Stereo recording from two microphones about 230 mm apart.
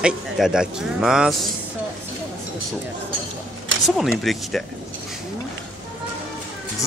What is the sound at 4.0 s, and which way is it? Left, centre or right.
Speech, centre.